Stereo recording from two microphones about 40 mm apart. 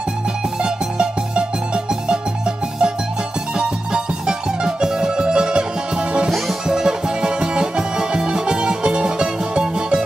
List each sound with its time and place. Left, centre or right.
0.6 s music: right